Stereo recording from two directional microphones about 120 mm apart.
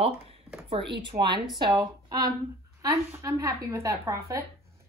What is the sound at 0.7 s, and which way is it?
Speech, 40° right (ahead or behind).